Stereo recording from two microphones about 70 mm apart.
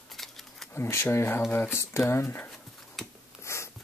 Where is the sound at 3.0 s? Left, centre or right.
Centre.